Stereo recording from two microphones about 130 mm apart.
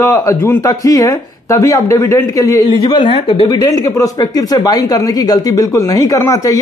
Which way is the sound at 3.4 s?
30° left (ahead or behind).